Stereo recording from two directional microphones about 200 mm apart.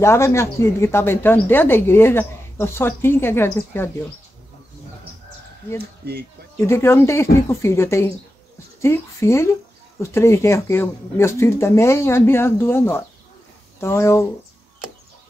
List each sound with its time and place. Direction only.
0.0 s speech: 15° left (ahead or behind)
5.8 s speech: 50° right (ahead or behind)
6.5 s speech: 15° left (ahead or behind)